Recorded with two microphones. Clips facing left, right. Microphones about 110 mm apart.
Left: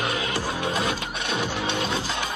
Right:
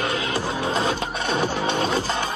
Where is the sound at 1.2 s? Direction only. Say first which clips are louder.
Right 4 dB; 40° right (ahead or behind).